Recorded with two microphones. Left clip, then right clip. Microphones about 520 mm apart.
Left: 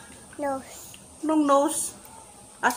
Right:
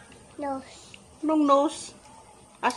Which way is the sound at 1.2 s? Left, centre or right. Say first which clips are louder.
Even; right.